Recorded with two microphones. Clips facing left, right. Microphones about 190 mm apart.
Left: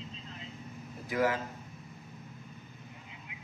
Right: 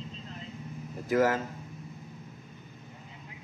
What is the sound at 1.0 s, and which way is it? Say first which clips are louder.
Speech: right 5 dB; 45° right (ahead or behind).